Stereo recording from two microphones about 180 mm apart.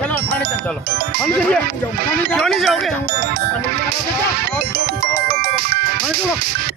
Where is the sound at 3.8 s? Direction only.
60° right (ahead or behind).